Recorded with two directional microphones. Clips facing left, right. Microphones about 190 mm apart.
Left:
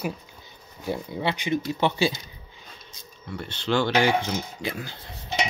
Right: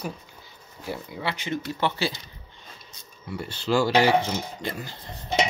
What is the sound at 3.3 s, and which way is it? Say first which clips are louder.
Speech: right 1 dB; 5° right (ahead or behind).